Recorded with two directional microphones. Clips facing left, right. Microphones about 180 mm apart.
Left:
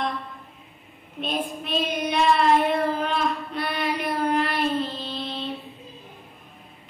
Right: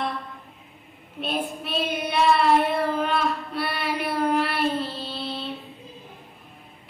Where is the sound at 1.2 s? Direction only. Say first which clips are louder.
Even; 5° right (ahead or behind).